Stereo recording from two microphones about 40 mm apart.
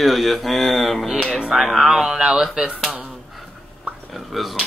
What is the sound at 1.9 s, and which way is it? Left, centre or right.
Speech, centre.